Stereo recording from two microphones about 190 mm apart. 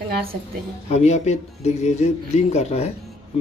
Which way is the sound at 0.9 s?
35° left (ahead or behind).